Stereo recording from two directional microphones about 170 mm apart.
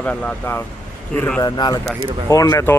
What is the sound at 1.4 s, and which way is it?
A man's voice, 25° left (ahead or behind).